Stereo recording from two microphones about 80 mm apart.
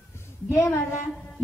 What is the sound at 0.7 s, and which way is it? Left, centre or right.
Speech, left.